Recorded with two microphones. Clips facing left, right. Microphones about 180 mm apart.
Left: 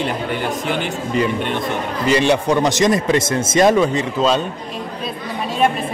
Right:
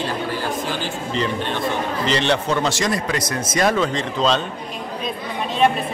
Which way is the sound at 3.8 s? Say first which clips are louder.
Left 4 dB; 10° left (ahead or behind).